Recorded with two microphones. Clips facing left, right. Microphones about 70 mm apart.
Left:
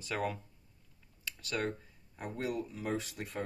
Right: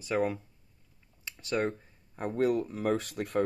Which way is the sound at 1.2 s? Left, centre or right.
Right.